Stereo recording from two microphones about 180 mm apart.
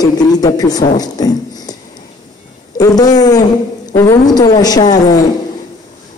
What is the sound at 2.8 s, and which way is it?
A man's voice, 20° left (ahead or behind).